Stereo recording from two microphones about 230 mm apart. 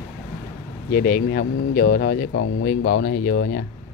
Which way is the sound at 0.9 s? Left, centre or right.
Left.